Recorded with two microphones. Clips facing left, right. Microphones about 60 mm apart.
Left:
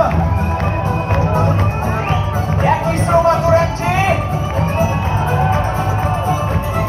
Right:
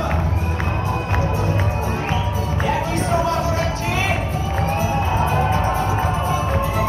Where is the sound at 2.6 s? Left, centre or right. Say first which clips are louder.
Left 6 dB; left.